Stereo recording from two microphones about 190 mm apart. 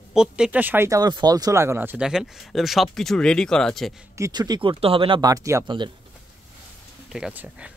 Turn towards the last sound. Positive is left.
turn(degrees=-5)  # may be behind; listen again after turning